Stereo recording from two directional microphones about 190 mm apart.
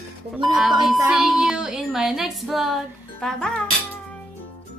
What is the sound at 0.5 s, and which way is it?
Music, centre (ahead or behind).